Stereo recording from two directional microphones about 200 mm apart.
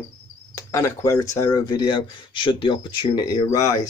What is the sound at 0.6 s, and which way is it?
Speech, 15° left (ahead or behind).